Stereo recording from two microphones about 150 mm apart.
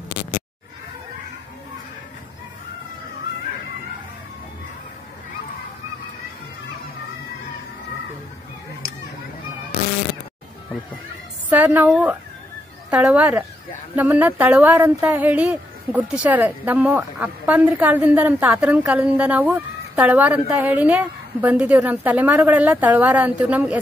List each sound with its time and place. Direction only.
11.5 s a woman's voice: 10° right (ahead or behind)
12.9 s speech: 10° right (ahead or behind)